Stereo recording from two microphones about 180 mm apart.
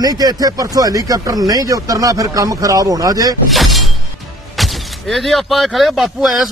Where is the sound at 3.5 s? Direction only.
Centre (ahead or behind).